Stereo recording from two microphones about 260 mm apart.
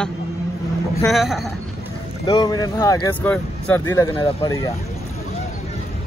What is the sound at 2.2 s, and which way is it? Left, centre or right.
Speech, centre.